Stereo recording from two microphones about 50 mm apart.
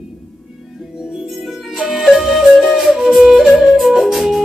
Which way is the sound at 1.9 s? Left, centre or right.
Centre.